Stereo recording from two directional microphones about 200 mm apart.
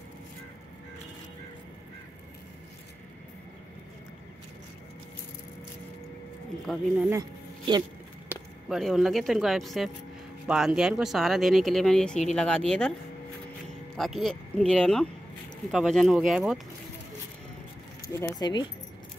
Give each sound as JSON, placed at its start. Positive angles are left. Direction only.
{"t": 6.7, "sound": "speech", "side_deg": 0}
{"t": 7.1, "sound": "a sound", "side_deg": -20}
{"t": 8.3, "sound": "speech", "side_deg": 0}
{"t": 13.9, "sound": "speech", "side_deg": 0}
{"t": 18.0, "sound": "speech", "side_deg": 20}